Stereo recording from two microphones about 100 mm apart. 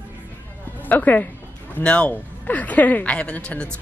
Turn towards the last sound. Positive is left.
turn(degrees=15)  # may be behind; listen again after turning